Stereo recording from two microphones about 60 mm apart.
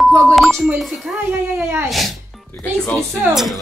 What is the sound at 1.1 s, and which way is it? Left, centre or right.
Speech, centre.